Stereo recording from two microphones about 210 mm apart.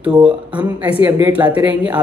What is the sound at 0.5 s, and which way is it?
Speech, 10° right (ahead or behind).